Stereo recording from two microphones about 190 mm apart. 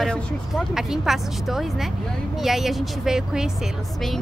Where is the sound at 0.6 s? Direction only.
Centre (ahead or behind).